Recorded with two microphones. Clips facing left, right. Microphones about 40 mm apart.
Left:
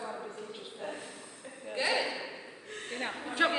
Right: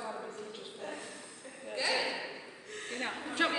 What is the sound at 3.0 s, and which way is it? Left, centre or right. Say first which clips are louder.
Speech: left 3 dB; centre.